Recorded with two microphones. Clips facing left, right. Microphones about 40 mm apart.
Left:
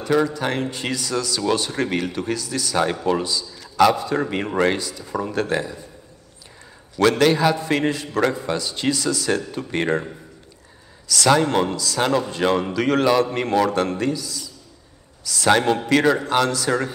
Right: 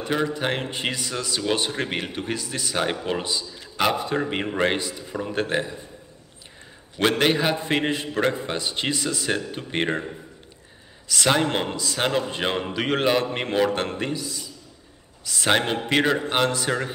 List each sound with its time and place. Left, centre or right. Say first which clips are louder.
0.0 s speech: left 4 dB; right
7.0 s speech: left 4 dB; right
11.1 s speech: left 4 dB; right